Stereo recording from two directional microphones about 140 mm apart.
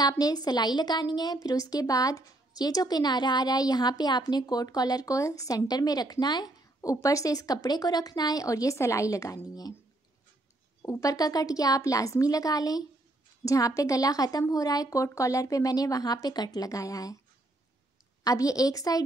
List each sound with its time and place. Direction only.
0.0 s a woman's voice: 30° left (ahead or behind)
10.8 s a woman's voice: 20° left (ahead or behind)
18.2 s a woman's voice: 25° left (ahead or behind)